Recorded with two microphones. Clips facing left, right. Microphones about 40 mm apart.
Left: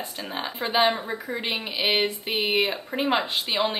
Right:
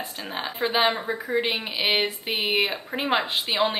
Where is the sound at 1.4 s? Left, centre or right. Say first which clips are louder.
Right 1 dB; centre.